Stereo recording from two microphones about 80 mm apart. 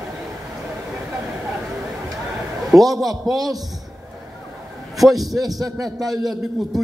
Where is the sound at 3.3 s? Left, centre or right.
Right.